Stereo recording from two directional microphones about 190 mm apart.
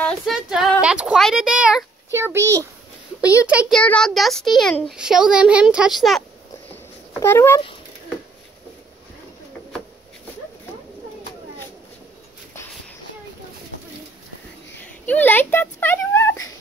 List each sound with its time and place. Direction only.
0.0 s speech: 5° right (ahead or behind)
2.1 s a child's voice: 15° right (ahead or behind)
3.8 s a child's voice: 5° left (ahead or behind)
6.7 s a sound: 10° left (ahead or behind)
15.0 s a child's voice: 10° left (ahead or behind)